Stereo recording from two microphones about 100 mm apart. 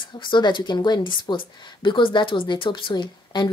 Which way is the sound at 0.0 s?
50° left (ahead or behind).